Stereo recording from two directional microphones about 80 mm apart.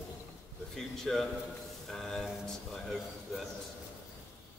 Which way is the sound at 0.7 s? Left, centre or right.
Centre.